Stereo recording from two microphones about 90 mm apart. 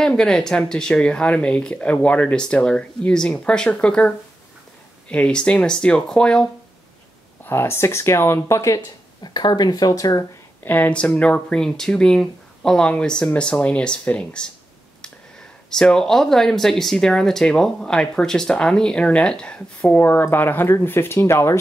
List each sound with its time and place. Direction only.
0.0 s speech: 10° left (ahead or behind)
5.1 s speech: 10° left (ahead or behind)
7.4 s speech: 25° left (ahead or behind)
9.2 s speech: 50° left (ahead or behind)
10.6 s speech: 20° left (ahead or behind)
15.7 s speech: 5° left (ahead or behind)
19.9 s speech: 25° left (ahead or behind)